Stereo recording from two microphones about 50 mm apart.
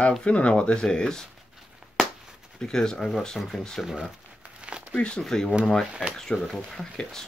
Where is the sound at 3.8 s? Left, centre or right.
Centre.